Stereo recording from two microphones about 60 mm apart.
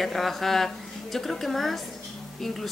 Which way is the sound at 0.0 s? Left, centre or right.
Centre.